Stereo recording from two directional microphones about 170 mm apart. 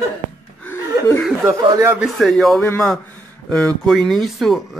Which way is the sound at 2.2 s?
Centre (ahead or behind).